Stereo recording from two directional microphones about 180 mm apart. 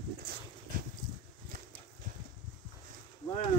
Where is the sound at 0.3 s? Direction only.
60° right (ahead or behind).